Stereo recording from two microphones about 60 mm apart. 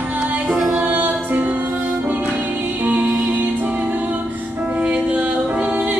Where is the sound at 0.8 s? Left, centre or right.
Right.